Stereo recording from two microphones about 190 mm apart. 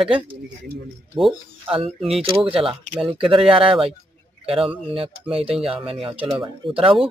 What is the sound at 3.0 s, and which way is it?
Speech, 30° right (ahead or behind).